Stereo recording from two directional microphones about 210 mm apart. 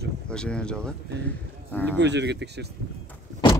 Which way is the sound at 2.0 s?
55° right (ahead or behind).